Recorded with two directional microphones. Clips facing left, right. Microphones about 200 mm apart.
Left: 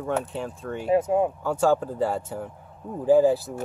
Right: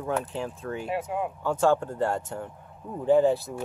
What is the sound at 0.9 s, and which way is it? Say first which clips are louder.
Speech: left 11 dB; 40° left (ahead or behind).